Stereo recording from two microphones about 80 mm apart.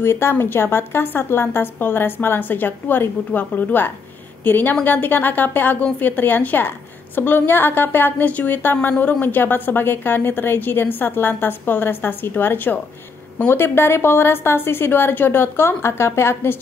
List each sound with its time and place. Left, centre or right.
0.0 s a woman's voice: left